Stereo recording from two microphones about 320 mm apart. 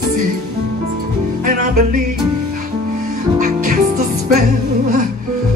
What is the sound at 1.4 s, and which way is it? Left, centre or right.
Music, right.